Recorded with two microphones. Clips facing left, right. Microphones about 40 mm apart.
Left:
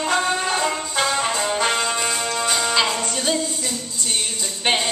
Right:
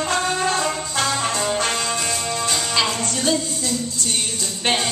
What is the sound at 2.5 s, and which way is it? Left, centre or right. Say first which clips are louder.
Music: left 2 dB; left.